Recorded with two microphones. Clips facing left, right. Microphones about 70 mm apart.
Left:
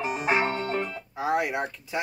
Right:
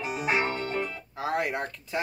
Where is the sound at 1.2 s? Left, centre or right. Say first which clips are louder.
Left 3 dB; centre.